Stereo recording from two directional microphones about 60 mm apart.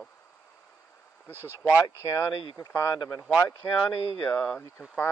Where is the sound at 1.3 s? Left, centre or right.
Right.